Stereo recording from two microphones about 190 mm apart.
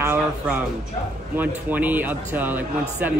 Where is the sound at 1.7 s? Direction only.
10° right (ahead or behind).